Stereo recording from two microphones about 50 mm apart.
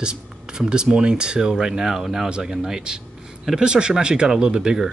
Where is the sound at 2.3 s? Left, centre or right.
Centre.